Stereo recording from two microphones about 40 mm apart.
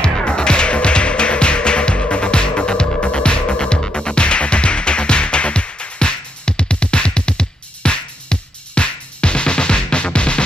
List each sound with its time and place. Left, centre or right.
0.0 s music: left